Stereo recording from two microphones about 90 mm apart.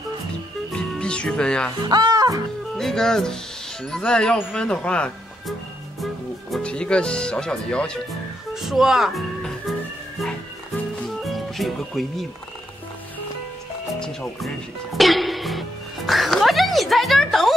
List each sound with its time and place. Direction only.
0.7 s music: 10° left (ahead or behind)
1.8 s speech: 50° right (ahead or behind)
2.8 s speech: 5° left (ahead or behind)
6.6 s speech: 10° left (ahead or behind)
8.5 s speech: 5° right (ahead or behind)
11.1 s music: centre (ahead or behind)
13.9 s speech: 5° left (ahead or behind)